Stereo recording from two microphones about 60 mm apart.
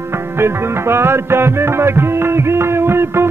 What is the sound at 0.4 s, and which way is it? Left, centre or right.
Music, right.